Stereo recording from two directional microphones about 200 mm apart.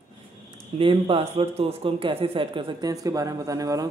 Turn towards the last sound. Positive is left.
turn(degrees=-15)  # may be behind; listen again after turning